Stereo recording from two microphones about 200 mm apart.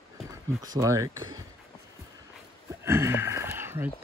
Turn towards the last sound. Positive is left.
turn(degrees=-10)  # may be behind; listen again after turning